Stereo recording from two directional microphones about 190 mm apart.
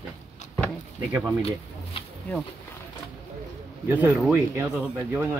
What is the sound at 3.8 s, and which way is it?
Speech, 10° right (ahead or behind).